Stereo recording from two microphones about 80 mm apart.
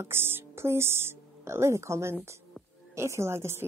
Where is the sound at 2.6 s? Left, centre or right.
Centre.